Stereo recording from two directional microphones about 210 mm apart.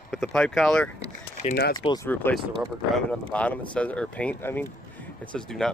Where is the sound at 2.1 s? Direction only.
10° left (ahead or behind).